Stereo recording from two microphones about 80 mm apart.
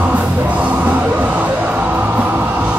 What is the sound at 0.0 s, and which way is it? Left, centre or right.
Music, centre.